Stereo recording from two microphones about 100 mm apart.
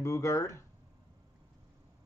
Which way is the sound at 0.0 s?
30° left (ahead or behind).